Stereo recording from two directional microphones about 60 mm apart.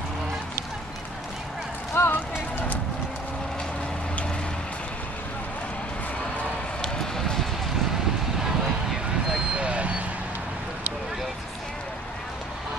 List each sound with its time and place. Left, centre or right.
2.0 s run: left
6.8 s run: centre
9.5 s vehicle: right